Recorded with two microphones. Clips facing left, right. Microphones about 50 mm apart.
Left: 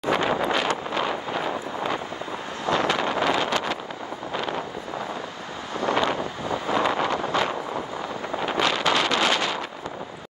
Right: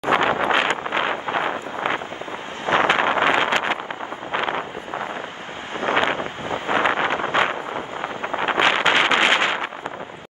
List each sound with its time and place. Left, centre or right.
0.0 s wind noise: right